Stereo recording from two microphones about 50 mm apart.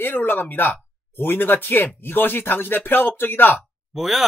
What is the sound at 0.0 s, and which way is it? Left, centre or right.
Speech, left.